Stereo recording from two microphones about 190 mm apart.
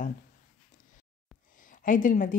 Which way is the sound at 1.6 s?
45° left (ahead or behind).